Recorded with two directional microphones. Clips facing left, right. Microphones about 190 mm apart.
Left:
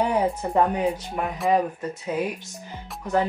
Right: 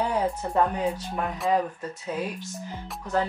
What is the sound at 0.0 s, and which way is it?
Speech, 15° left (ahead or behind).